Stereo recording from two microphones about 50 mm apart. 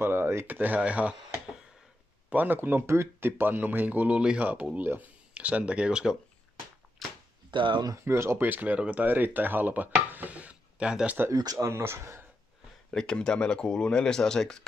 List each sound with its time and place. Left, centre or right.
0.0 s speech: right
0.5 s speech: right
2.2 s speech: right
2.9 s speech: right
3.3 s speech: right
5.3 s speech: right
7.0 s chop: centre
8.0 s speech: right
8.4 s speech: right
9.0 s speech: right
10.0 s dishes: right
11.2 s speech: right
12.9 s speech: centre